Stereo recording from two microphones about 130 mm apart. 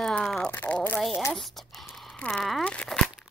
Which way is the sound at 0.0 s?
5° left (ahead or behind).